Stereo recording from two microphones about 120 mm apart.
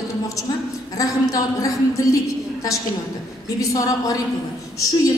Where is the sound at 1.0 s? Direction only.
30° left (ahead or behind).